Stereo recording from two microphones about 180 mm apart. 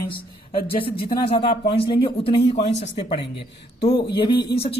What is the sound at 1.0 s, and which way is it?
Speech, 30° left (ahead or behind).